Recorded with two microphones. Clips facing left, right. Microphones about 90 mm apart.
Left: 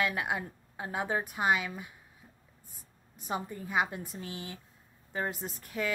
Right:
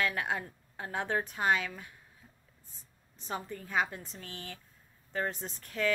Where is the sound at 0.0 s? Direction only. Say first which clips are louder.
Left 1 dB; 10° left (ahead or behind).